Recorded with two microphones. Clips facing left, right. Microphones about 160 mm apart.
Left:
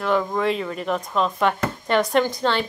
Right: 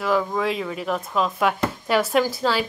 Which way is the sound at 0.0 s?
Centre (ahead or behind).